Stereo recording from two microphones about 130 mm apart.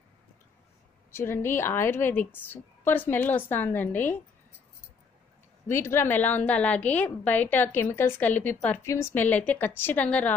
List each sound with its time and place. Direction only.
1.1 s a woman's voice: 20° left (ahead or behind)
5.7 s a woman's voice: 20° left (ahead or behind)